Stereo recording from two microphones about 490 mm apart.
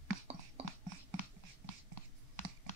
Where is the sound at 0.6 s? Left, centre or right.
Centre.